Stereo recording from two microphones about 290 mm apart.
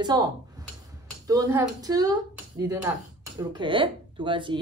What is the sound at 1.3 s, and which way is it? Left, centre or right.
A woman's voice, centre.